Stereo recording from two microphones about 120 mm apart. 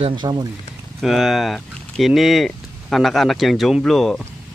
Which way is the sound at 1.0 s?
Centre (ahead or behind).